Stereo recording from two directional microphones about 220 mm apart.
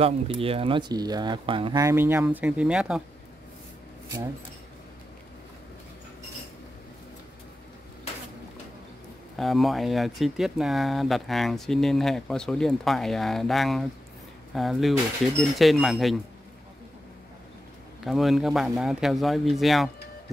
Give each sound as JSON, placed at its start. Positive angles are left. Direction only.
{"t": 0.0, "sound": "speech", "side_deg": -25}
{"t": 9.4, "sound": "speech", "side_deg": 0}
{"t": 18.0, "sound": "speech", "side_deg": 0}